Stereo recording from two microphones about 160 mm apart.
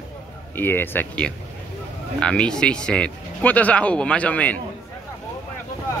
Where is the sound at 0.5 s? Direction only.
15° left (ahead or behind).